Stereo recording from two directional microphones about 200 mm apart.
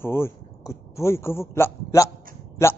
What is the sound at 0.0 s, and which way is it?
Speech, 10° left (ahead or behind).